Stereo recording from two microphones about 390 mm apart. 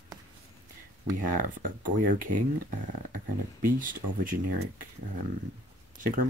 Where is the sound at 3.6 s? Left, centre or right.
Right.